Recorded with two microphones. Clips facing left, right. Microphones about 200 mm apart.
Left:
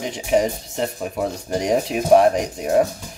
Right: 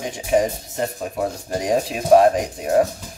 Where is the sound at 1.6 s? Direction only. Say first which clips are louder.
Left 1 dB; 20° left (ahead or behind).